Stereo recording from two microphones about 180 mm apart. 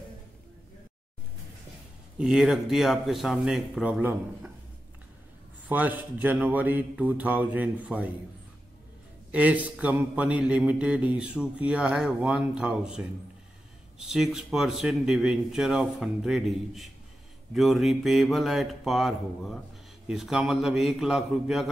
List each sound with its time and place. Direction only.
2.1 s speech: 5° right (ahead or behind)
5.7 s speech: 10° right (ahead or behind)
9.3 s speech: 10° right (ahead or behind)